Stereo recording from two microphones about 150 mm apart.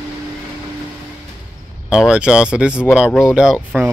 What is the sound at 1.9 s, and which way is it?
Speech, 5° right (ahead or behind).